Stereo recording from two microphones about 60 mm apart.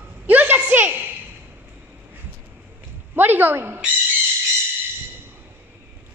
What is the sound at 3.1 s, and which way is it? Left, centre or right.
Speech, right.